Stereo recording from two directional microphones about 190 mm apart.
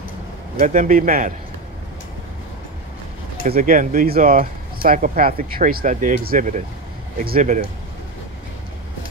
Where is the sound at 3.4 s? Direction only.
50° right (ahead or behind).